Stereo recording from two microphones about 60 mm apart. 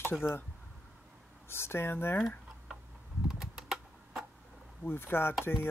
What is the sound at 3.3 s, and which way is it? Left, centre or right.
Typing, centre.